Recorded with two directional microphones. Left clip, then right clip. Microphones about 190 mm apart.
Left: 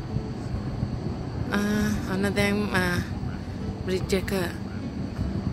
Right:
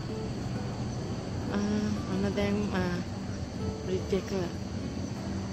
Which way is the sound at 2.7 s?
25° left (ahead or behind).